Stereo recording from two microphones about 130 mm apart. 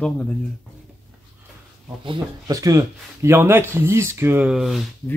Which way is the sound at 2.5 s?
25° right (ahead or behind).